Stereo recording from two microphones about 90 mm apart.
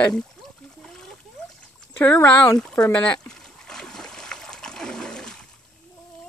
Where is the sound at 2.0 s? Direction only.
20° left (ahead or behind).